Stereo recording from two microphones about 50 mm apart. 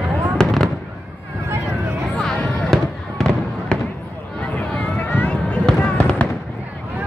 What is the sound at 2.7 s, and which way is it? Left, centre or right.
Fireworks, centre.